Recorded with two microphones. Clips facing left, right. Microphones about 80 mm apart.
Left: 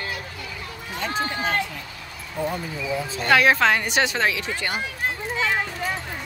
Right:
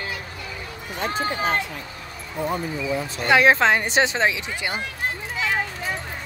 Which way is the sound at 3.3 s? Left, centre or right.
Right.